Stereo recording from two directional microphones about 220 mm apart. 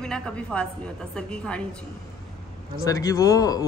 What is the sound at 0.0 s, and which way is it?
A woman's voice, 5° left (ahead or behind).